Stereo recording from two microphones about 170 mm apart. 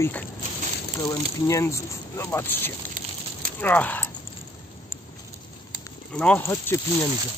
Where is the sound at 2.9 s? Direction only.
50° right (ahead or behind).